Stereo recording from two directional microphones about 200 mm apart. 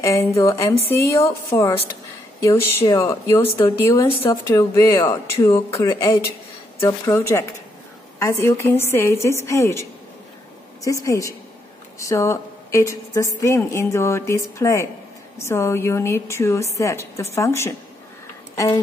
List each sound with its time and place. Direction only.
0.0 s a woman's voice: 15° left (ahead or behind)